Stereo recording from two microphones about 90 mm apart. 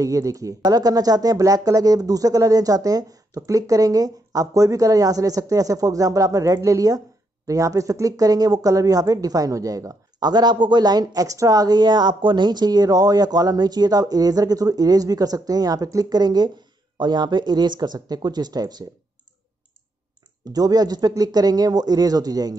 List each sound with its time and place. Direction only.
0.0 s speech: 40° right (ahead or behind)
20.5 s speech: 45° right (ahead or behind)